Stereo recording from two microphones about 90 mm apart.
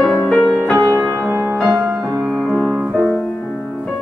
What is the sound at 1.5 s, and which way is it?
Music, centre (ahead or behind).